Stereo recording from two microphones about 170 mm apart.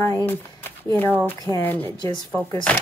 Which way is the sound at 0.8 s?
10° left (ahead or behind).